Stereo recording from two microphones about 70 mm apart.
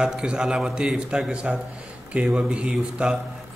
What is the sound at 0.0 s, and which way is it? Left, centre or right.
A man's voice, centre.